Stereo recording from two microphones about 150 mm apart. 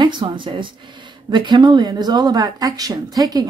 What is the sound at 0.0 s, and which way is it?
Speech, 30° right (ahead or behind).